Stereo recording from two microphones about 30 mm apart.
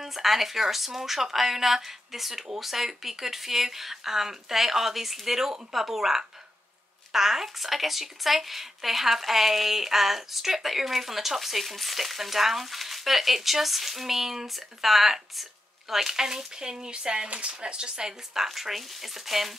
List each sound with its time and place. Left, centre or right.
0.0 s speech: centre; by 18.1 s right
18.3 s speech: centre